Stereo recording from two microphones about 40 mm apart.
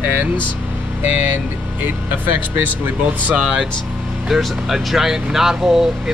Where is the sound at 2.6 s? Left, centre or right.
Right.